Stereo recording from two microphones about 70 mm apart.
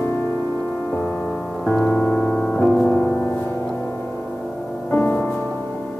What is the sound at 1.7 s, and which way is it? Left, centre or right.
Music, centre.